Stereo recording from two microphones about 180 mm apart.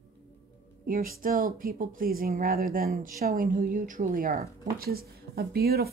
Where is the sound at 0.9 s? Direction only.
50° right (ahead or behind).